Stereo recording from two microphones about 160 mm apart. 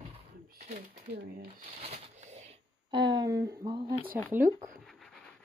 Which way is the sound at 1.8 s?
45° right (ahead or behind).